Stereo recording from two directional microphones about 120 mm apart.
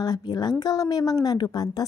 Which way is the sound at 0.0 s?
35° left (ahead or behind).